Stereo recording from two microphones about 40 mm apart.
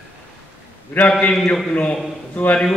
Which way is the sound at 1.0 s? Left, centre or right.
Left.